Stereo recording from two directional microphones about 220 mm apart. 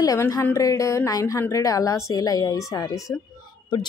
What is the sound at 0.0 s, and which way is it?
Speech, 15° left (ahead or behind).